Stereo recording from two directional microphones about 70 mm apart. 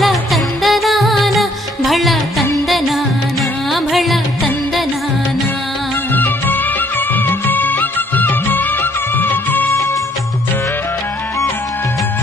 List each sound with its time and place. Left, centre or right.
0.0 s music: centre
3.7 s music: centre
6.1 s music: left
7.2 s music of bollywood: left